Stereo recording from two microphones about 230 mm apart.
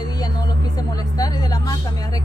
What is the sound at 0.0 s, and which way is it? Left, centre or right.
A woman's voice, centre.